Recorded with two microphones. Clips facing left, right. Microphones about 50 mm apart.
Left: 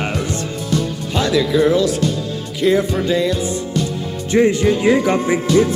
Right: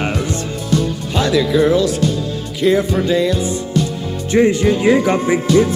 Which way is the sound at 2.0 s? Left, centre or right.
Centre.